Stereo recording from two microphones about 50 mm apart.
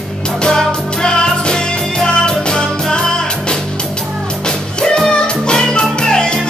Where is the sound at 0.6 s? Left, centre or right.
Centre.